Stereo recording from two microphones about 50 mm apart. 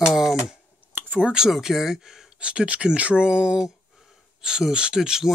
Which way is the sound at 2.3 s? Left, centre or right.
Right.